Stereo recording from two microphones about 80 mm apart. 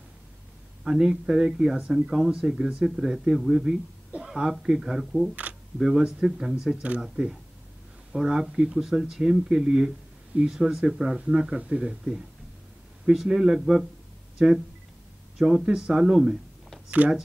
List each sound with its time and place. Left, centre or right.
0.8 s speech: centre
5.3 s camera: centre
5.8 s speech: centre
16.9 s speech: centre